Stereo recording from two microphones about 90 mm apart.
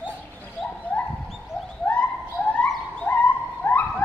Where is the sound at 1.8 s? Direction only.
15° left (ahead or behind).